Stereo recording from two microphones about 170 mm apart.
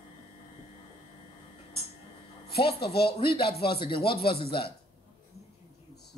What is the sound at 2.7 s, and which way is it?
Speech, 70° left (ahead or behind).